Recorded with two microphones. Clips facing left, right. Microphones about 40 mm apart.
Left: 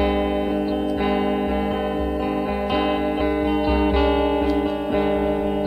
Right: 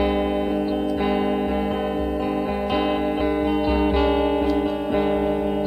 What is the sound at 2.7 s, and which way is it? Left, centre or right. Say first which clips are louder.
Music: left 1 dB; centre.